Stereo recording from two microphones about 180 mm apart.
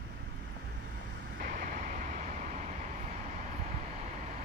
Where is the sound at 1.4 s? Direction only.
45° right (ahead or behind).